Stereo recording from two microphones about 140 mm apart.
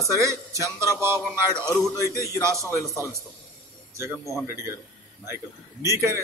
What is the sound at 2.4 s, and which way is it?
Speech, 20° right (ahead or behind).